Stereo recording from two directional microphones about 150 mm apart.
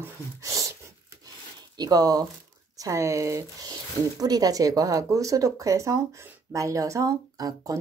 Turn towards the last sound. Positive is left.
turn(degrees=-25)  # may be behind; listen again after turning